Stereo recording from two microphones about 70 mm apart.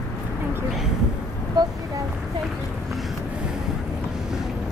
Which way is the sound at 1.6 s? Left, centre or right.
Right.